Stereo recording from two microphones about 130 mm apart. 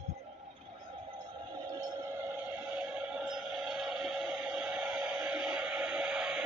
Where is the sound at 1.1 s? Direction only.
30° right (ahead or behind).